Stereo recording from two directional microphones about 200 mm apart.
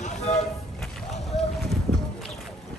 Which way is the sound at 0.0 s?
35° left (ahead or behind).